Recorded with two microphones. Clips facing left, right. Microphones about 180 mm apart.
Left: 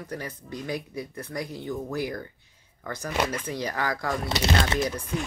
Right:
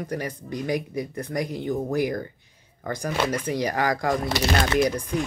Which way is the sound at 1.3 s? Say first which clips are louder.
Right 5 dB; 50° right (ahead or behind).